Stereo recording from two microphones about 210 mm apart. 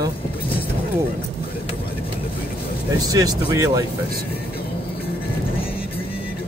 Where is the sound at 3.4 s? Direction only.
15° right (ahead or behind).